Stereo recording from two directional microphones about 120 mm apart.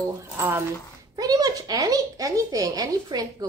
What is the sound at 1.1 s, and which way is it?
Speech, 30° right (ahead or behind).